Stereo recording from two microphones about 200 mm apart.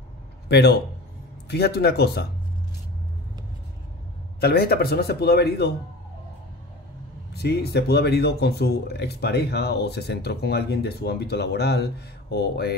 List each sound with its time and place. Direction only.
0.5 s a man's voice: 55° left (ahead or behind)
4.4 s a man's voice: 50° left (ahead or behind)
7.3 s speech: 55° left (ahead or behind)